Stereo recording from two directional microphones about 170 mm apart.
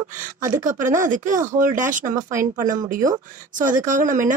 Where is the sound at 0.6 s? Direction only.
50° right (ahead or behind).